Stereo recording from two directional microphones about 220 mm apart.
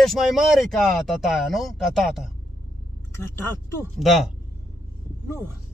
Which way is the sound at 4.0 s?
Centre (ahead or behind).